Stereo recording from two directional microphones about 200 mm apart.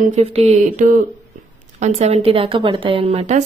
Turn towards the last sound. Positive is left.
turn(degrees=-35)  # may be behind; listen again after turning